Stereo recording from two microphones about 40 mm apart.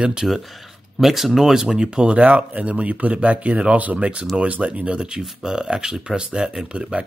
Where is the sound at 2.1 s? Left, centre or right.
Right.